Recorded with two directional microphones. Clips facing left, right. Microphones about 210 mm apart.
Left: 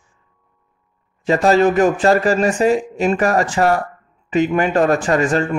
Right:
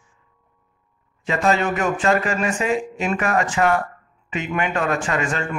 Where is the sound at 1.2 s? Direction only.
35° left (ahead or behind).